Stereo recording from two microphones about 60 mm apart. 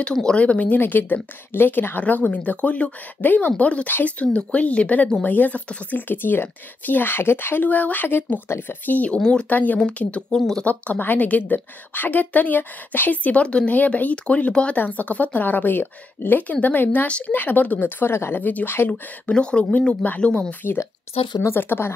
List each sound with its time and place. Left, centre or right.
0.1 s speech: centre
0.4 s a woman's voice: left
0.7 s a woman's voice: left; by 9.5 s centre
9.5 s a woman's voice: left
18.4 s a woman's voice: left
21.4 s speech: left